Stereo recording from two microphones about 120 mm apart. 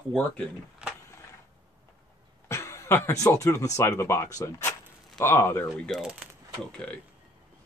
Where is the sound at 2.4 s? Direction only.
25° left (ahead or behind).